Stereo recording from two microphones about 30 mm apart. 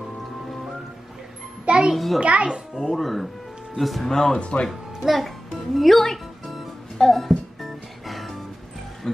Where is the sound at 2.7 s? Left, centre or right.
Centre.